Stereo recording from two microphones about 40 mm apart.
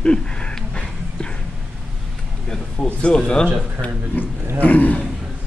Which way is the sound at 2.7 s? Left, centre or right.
Left.